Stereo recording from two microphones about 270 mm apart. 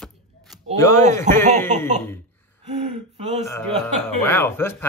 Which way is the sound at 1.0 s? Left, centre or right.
Right.